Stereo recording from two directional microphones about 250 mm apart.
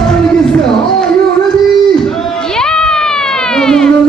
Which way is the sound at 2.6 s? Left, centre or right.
Centre.